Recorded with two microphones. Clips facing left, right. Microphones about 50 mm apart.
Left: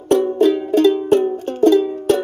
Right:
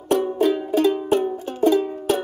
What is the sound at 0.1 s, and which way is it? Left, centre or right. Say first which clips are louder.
Music: left 5 dB; left.